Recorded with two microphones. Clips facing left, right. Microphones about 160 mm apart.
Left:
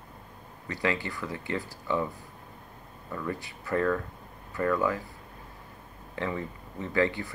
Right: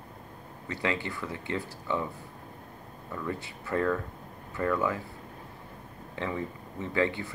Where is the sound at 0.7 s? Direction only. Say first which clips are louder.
Left 1 dB; 20° right (ahead or behind).